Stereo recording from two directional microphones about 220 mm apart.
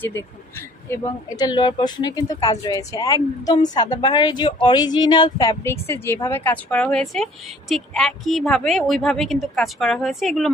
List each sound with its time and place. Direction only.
0.8 s speech: 15° left (ahead or behind)